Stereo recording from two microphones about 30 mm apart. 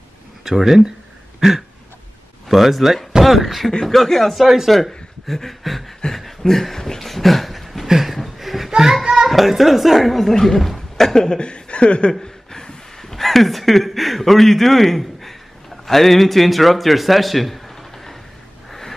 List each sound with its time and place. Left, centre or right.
0.5 s speech: centre
2.4 s a woman's voice: centre
3.8 s a woman's voice: centre
7.8 s chuckle: centre
9.0 s children playing: right
9.3 s a woman's voice: centre
11.1 s speech: left
12.1 s a sound: left
13.0 s a man's voice: centre
18.7 s a sound: centre